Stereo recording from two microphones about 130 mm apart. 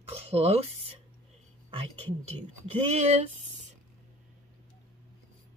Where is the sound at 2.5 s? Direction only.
60° right (ahead or behind).